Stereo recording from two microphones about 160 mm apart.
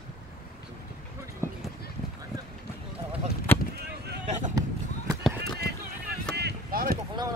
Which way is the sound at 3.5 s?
15° left (ahead or behind).